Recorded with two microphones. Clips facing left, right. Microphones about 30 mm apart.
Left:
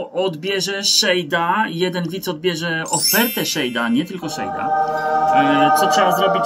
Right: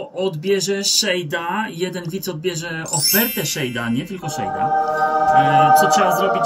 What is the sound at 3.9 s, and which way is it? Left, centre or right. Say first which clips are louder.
Speech: left 3 dB; left.